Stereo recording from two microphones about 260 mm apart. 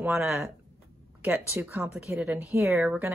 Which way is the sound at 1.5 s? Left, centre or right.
Centre.